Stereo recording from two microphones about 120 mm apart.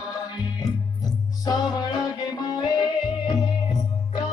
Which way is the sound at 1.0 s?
35° left (ahead or behind).